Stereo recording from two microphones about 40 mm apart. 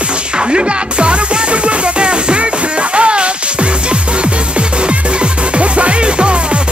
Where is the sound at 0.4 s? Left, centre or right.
Right.